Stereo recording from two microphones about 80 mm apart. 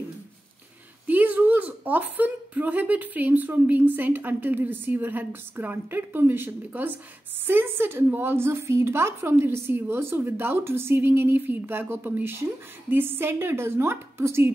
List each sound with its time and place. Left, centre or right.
1.0 s a woman's voice: centre